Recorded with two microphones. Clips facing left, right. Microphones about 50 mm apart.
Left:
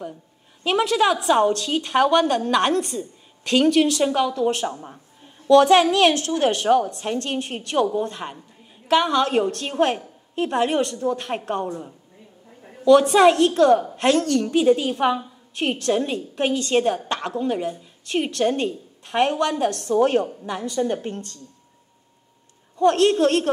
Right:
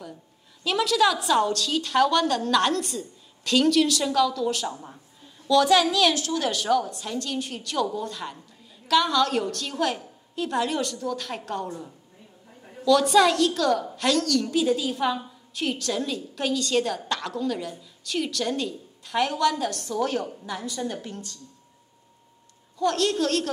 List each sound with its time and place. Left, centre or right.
0.7 s a woman's voice: left
12.8 s a woman's voice: left
22.8 s a woman's voice: left